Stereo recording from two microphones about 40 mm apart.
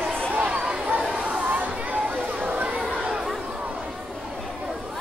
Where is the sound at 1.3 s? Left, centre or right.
Right.